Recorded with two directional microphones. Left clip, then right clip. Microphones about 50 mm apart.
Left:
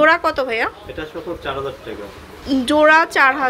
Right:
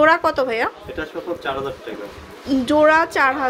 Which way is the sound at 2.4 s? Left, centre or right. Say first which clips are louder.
Left 1 dB; right.